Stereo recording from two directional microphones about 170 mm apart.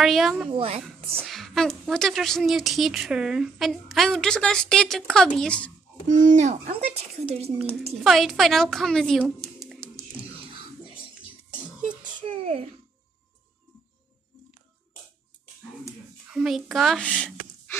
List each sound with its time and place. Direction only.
0.0 s a woman's voice: centre (ahead or behind)
0.5 s speech: 35° right (ahead or behind)
0.8 s a woman's voice: centre (ahead or behind)
6.0 s speech: 45° right (ahead or behind)
8.0 s speech: centre (ahead or behind)
12.0 s a sound: 50° right (ahead or behind)
12.3 s a sound: 35° right (ahead or behind)
16.3 s a child's voice: 5° right (ahead or behind)